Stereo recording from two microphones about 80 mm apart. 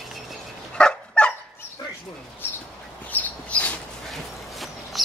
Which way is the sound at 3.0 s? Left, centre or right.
Left.